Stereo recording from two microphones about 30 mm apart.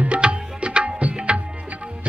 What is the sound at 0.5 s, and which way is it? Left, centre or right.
Tabla, right.